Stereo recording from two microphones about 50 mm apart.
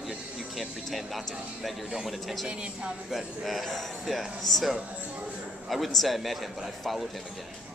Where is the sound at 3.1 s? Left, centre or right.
Centre.